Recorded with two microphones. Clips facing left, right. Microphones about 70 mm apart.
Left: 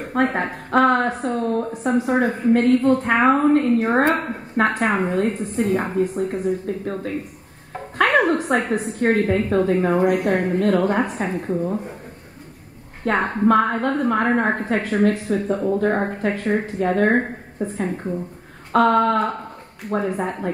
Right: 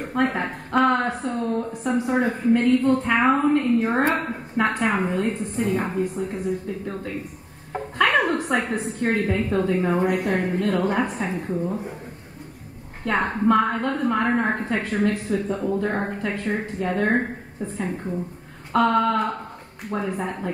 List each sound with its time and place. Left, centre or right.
0.1 s a woman's voice: left
8.0 s music: left
8.8 s a woman's voice: left
11.4 s speech: centre
13.0 s a woman's voice: left